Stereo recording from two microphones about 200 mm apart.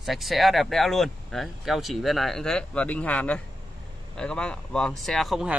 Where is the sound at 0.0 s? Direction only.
Centre (ahead or behind).